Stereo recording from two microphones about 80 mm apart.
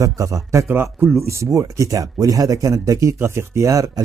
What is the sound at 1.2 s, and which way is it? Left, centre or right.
Speech, right.